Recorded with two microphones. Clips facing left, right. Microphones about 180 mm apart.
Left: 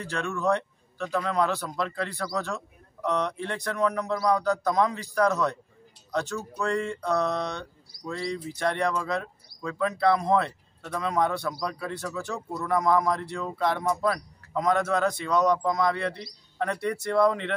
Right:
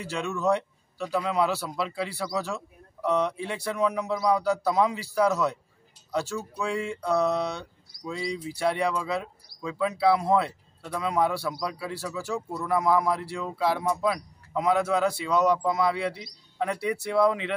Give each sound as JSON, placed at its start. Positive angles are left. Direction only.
{"t": 0.0, "sound": "speech", "side_deg": -5}